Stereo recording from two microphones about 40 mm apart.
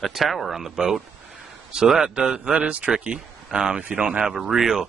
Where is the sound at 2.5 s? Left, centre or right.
Right.